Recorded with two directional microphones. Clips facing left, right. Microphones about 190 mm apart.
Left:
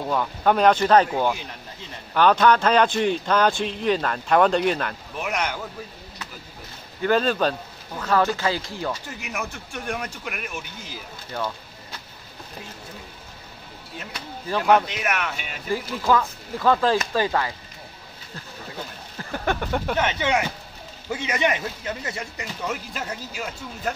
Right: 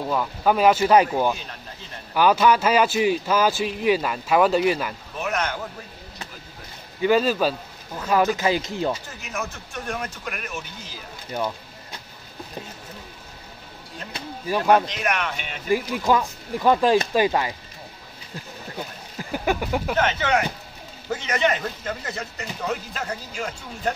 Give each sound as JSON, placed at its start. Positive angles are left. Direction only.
{"t": 0.1, "sound": "a man's voice", "side_deg": -5}
{"t": 5.2, "sound": "speech", "side_deg": 10}
{"t": 7.0, "sound": "a man's voice", "side_deg": -10}
{"t": 9.2, "sound": "speech", "side_deg": 10}
{"t": 11.3, "sound": "a man's voice", "side_deg": -15}
{"t": 14.9, "sound": "speech", "side_deg": 5}
{"t": 15.7, "sound": "a man's voice", "side_deg": -15}
{"t": 19.1, "sound": "speech", "side_deg": -10}
{"t": 20.0, "sound": "speech", "side_deg": 15}